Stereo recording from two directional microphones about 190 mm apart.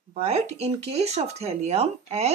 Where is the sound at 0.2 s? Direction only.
35° right (ahead or behind).